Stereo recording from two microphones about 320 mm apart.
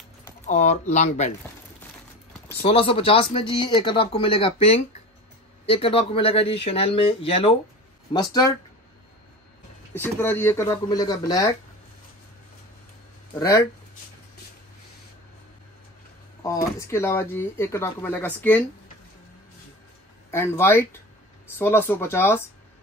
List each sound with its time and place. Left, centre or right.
0.5 s speech: left
2.6 s speech: centre
9.9 s speech: centre
13.3 s speech: centre
16.4 s speech: centre
20.2 s speech: centre